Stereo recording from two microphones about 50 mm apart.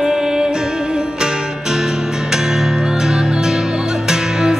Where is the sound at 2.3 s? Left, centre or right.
Centre.